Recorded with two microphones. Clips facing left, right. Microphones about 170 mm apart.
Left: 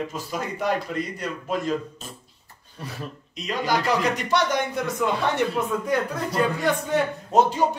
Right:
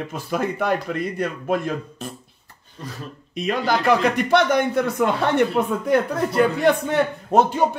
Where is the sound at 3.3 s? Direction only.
55° right (ahead or behind).